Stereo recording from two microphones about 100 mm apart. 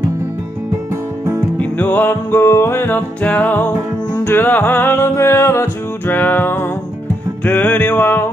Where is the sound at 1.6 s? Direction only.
15° left (ahead or behind).